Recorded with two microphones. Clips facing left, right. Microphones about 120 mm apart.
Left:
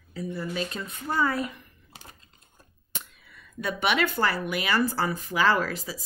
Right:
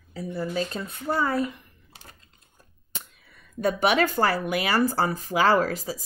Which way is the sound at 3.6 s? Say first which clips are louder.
Right 4 dB; 45° right (ahead or behind).